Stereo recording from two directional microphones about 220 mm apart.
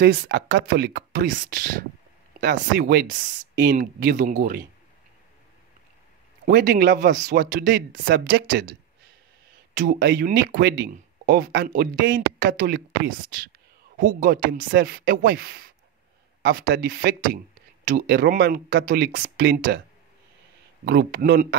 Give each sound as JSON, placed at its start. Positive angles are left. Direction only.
{"t": 0.0, "sound": "speech", "side_deg": -50}
{"t": 6.4, "sound": "speech", "side_deg": -45}
{"t": 9.9, "sound": "speech", "side_deg": -55}
{"t": 10.2, "sound": "speech", "side_deg": -40}
{"t": 20.8, "sound": "speech", "side_deg": -45}